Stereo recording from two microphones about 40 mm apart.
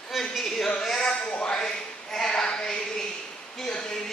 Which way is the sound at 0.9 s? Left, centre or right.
Left.